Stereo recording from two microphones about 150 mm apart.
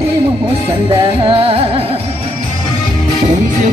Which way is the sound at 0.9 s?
35° right (ahead or behind).